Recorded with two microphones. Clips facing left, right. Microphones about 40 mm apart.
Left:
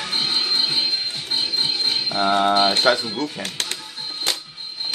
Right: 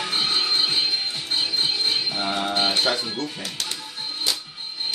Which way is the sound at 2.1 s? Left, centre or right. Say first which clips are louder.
Left 7 dB; left.